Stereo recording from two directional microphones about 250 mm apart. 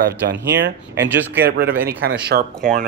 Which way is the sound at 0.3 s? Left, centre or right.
Right.